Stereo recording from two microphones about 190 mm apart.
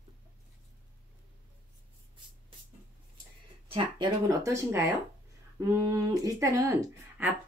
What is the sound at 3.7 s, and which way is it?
Speech, 20° right (ahead or behind).